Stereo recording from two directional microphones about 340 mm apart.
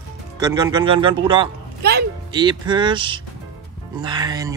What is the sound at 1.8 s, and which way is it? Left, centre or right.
Speech, right.